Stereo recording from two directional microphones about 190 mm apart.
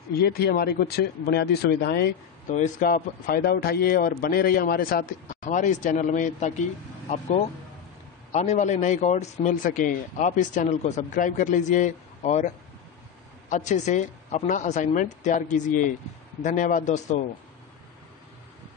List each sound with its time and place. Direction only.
0.2 s speech: 55° left (ahead or behind)
2.5 s a man's voice: 45° left (ahead or behind)
13.5 s a man's voice: 40° left (ahead or behind)